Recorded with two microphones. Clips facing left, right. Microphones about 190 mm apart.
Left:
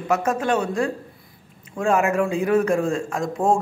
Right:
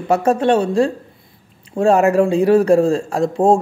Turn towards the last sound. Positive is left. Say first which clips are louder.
# right 7 dB
turn(degrees=-35)  # may be behind; listen again after turning